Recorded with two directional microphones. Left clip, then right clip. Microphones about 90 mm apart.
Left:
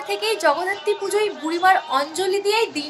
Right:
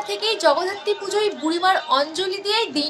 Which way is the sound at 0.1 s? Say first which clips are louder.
Right 1 dB; 15° left (ahead or behind).